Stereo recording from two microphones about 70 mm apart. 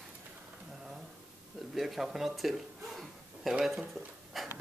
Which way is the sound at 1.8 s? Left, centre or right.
Centre.